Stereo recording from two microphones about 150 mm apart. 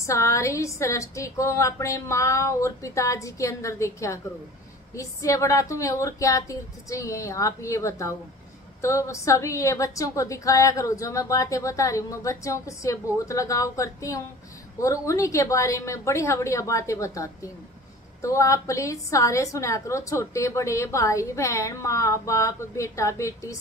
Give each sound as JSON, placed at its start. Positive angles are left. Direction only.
{"t": 0.0, "sound": "a woman's voice", "side_deg": 20}